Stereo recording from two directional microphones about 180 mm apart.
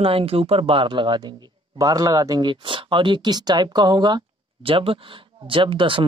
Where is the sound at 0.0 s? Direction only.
30° right (ahead or behind).